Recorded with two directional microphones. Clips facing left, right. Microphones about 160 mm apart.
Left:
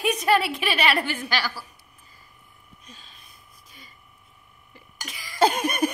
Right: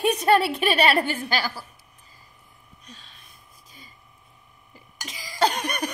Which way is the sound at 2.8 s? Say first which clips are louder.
Right 2 dB; centre (ahead or behind).